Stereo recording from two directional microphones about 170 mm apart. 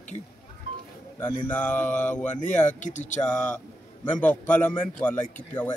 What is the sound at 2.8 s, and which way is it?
Speech, 45° left (ahead or behind).